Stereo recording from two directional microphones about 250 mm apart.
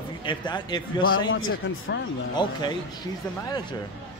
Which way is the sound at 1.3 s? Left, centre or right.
Left.